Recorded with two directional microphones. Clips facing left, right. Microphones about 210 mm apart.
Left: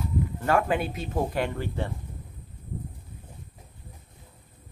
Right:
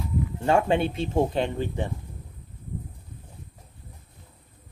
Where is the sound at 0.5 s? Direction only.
25° right (ahead or behind).